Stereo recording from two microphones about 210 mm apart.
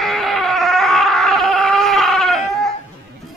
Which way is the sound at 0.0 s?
Centre (ahead or behind).